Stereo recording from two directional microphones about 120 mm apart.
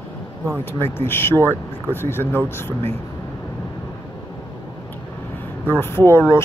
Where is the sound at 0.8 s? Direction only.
20° left (ahead or behind).